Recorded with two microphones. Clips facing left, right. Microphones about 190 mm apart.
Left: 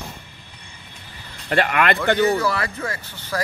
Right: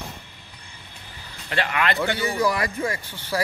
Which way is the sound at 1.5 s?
55° left (ahead or behind).